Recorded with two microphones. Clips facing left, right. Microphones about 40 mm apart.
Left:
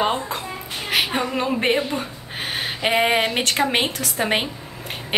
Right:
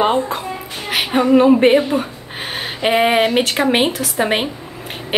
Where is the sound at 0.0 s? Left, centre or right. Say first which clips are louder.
Right 6 dB; centre.